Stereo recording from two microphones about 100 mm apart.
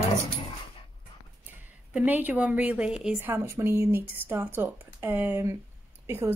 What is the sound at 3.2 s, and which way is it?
A woman's voice, 25° right (ahead or behind).